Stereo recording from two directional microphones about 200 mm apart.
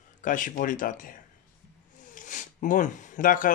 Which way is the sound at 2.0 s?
40° left (ahead or behind).